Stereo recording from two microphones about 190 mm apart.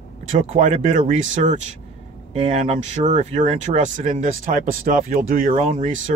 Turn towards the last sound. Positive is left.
turn(degrees=-35)  # may be behind; listen again after turning